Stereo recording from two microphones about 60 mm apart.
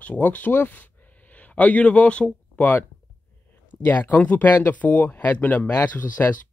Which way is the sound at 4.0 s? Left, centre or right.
Left.